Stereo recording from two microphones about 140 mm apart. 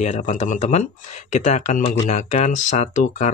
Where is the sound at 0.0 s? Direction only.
65° left (ahead or behind).